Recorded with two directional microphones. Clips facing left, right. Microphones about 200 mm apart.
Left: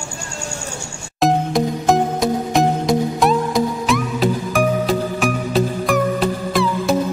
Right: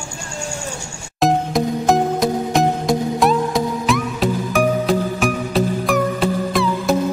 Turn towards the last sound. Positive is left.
turn(degrees=0)  # may be behind; listen again after turning